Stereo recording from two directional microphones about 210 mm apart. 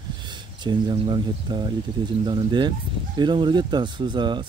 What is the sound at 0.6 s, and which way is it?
Speech, 20° right (ahead or behind).